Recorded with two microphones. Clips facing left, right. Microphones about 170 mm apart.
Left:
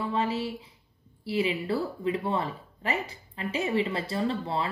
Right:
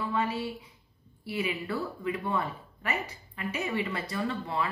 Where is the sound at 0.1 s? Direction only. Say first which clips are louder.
Left 2 dB; 25° left (ahead or behind).